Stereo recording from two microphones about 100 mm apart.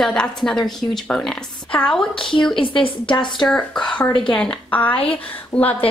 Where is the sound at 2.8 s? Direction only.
55° left (ahead or behind).